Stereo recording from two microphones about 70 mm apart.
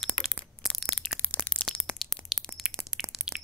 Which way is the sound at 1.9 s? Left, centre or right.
Centre.